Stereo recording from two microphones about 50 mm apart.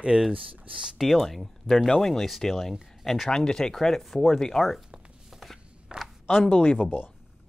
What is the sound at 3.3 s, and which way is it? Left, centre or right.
Speech, centre.